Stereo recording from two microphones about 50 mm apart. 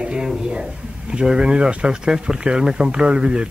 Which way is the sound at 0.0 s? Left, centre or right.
Centre.